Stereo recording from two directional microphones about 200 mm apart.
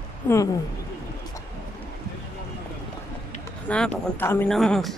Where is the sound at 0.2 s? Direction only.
10° left (ahead or behind).